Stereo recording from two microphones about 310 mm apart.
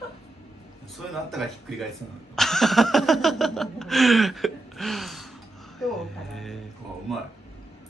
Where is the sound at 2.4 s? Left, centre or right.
Centre.